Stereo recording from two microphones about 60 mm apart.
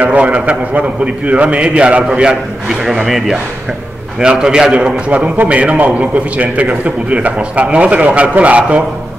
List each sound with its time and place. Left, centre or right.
0.0 s a man's voice: right